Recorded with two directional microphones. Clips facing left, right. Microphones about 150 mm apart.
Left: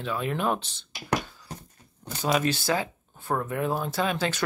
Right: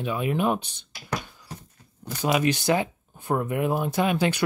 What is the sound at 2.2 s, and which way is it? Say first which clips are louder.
Speech: right 2 dB; 15° right (ahead or behind).